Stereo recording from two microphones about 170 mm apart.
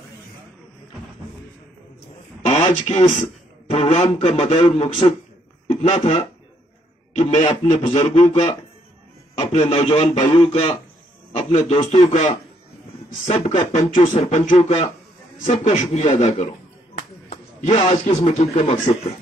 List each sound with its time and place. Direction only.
2.4 s a man's voice: 40° left (ahead or behind)
17.3 s a sound: 45° left (ahead or behind)
17.7 s speech: 30° left (ahead or behind)